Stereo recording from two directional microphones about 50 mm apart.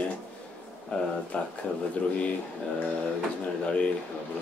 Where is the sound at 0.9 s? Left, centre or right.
Centre.